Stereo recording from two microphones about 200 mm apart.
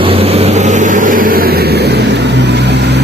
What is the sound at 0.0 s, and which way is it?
Vehicle, 30° right (ahead or behind).